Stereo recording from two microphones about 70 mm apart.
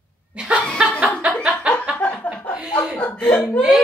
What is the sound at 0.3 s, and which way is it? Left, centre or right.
Snicker, centre.